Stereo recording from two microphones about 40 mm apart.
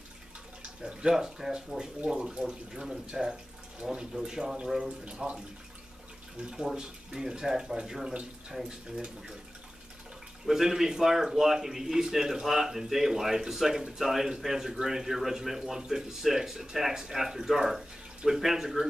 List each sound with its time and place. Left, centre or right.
1.1 s a man's voice: centre
4.8 s speech: right
6.5 s a man's voice: centre
8.1 s speech: right
8.5 s a man's voice: centre
10.4 s a man's voice: centre